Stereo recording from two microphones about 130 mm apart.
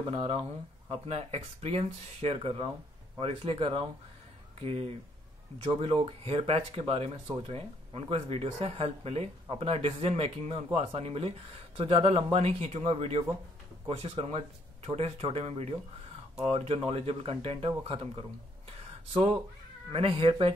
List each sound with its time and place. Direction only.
0.0 s speech: 45° right (ahead or behind)